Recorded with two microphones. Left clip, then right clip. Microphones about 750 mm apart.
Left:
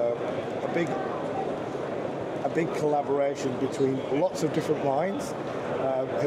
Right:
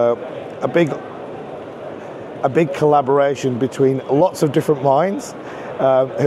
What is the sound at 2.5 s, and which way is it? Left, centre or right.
Speech, right.